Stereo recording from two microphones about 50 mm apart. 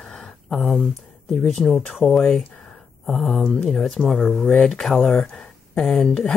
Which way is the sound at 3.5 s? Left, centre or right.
Centre.